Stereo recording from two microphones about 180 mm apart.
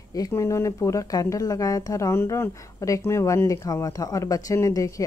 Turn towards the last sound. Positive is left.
turn(degrees=20)  # may be behind; listen again after turning